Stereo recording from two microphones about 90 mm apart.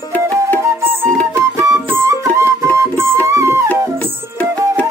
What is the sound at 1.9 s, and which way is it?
Music, 30° right (ahead or behind).